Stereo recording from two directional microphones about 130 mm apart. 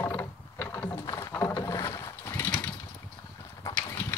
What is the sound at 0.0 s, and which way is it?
Mechanisms, 20° left (ahead or behind).